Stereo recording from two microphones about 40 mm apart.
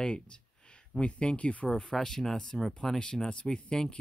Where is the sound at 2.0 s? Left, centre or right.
Centre.